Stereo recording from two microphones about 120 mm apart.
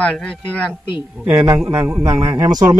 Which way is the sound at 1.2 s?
20° right (ahead or behind).